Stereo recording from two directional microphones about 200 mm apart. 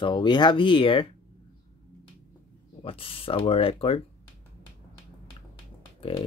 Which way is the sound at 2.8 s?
30° left (ahead or behind).